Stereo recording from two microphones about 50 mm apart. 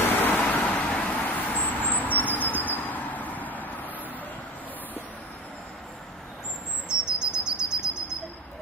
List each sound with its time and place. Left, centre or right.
0.2 s vehicle: left
6.9 s bird: centre